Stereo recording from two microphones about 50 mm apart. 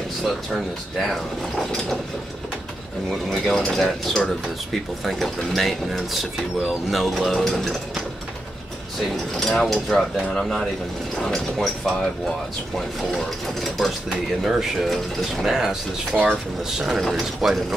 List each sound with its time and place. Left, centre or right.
0.9 s speech: centre
3.1 s speech: centre
9.1 s speech: centre
14.4 s speech: centre